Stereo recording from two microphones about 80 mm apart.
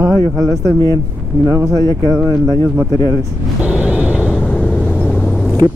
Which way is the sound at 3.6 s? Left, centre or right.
Centre.